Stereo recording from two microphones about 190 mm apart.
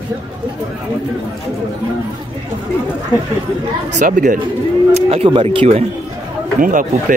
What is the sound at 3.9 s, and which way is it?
Speech, 45° right (ahead or behind).